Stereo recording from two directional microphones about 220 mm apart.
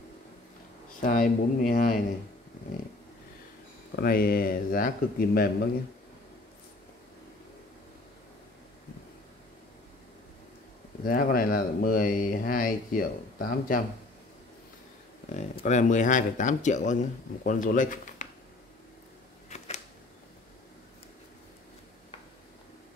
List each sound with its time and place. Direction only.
1.0 s speech: 40° left (ahead or behind)
3.9 s speech: 45° left (ahead or behind)
11.1 s speech: 40° left (ahead or behind)
15.3 s speech: 35° left (ahead or behind)